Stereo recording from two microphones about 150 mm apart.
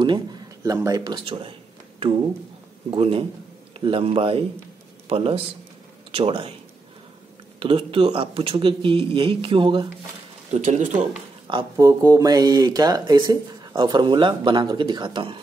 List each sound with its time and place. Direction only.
0.0 s speech: 30° right (ahead or behind)
2.9 s speech: 35° right (ahead or behind)
7.6 s speech: 35° right (ahead or behind)
10.5 s speech: 55° right (ahead or behind)
11.7 s speech: 20° right (ahead or behind)